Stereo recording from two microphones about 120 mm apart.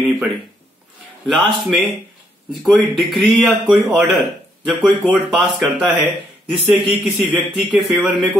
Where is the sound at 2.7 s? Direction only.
Centre (ahead or behind).